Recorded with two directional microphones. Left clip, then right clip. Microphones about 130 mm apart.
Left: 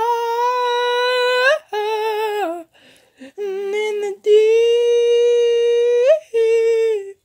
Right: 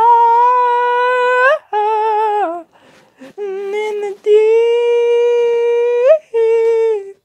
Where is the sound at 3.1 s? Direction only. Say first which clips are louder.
Right 2 dB; 30° left (ahead or behind).